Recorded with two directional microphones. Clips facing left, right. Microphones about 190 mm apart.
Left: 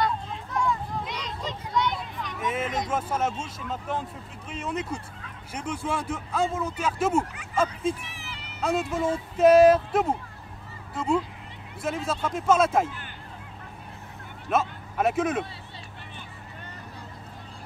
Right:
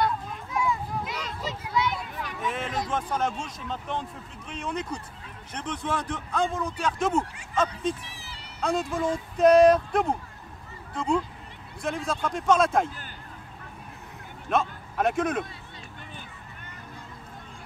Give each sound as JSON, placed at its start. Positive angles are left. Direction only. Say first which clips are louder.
{"t": 0.0, "sound": "children playing", "louder": "even", "side_deg": -10}
{"t": 1.4, "sound": "a sound", "louder": "left 1 dB", "side_deg": -5}
{"t": 2.9, "sound": "speech", "louder": "left 1 dB", "side_deg": 5}
{"t": 8.0, "sound": "cat", "louder": "left 2 dB", "side_deg": -35}
{"t": 8.5, "sound": "speech", "louder": "left 1 dB", "side_deg": 5}
{"t": 14.5, "sound": "speech", "louder": "even", "side_deg": 5}